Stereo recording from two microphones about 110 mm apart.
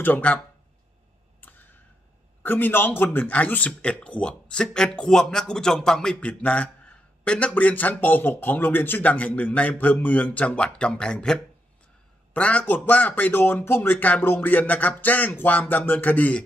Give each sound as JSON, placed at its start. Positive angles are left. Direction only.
{"t": 0.0, "sound": "a man's voice", "side_deg": 15}
{"t": 1.4, "sound": "a sound", "side_deg": 15}
{"t": 2.4, "sound": "a man's voice", "side_deg": 15}
{"t": 12.4, "sound": "a man's voice", "side_deg": 10}